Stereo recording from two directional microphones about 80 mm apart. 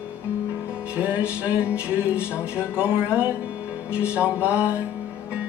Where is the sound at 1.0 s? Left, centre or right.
Centre.